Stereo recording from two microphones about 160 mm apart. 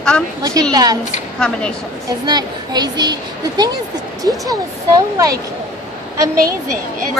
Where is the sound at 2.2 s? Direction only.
25° right (ahead or behind).